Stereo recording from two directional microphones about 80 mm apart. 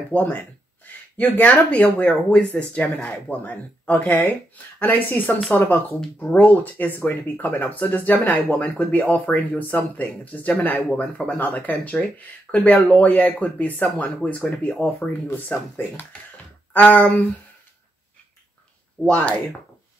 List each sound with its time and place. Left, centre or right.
0.1 s speech: centre
19.0 s speech: centre